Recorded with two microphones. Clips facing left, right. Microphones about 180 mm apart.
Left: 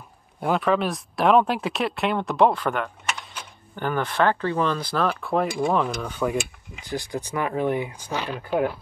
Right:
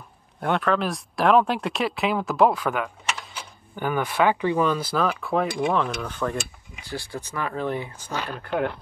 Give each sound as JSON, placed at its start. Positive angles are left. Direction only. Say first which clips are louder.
{"t": 0.4, "sound": "speech", "louder": "left 1 dB", "side_deg": 0}